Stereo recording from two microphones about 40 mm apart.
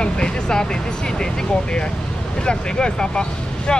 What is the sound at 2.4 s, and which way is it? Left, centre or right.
Speech, left.